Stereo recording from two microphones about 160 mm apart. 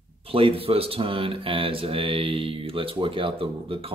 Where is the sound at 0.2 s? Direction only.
35° right (ahead or behind).